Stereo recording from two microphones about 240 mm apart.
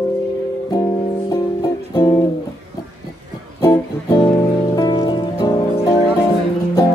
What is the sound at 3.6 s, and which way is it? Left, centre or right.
Music, centre.